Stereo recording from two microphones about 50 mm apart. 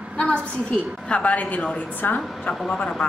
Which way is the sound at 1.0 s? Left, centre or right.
Left.